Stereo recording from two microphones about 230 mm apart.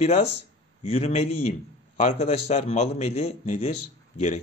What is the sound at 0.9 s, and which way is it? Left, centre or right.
Speech, left.